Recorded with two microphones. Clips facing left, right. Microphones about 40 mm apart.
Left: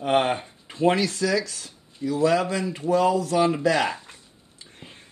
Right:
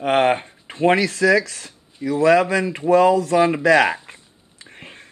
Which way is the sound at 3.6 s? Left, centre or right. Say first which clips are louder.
Right 7 dB; right.